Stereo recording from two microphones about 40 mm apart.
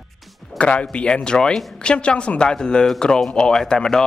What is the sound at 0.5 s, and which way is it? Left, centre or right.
A man's voice, left.